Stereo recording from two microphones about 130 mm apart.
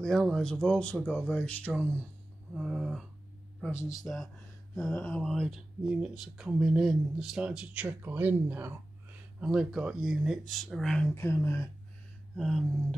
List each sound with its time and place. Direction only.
0.0 s speech: 5° left (ahead or behind)
2.5 s speech: centre (ahead or behind)
9.4 s speech: 5° right (ahead or behind)
11.1 s speech: 20° left (ahead or behind)
12.4 s speech: centre (ahead or behind)